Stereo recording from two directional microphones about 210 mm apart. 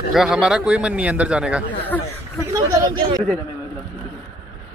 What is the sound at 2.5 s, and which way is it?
Speech, 20° right (ahead or behind).